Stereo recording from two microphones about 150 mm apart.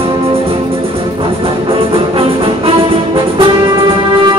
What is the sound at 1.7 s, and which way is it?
Music, 40° right (ahead or behind).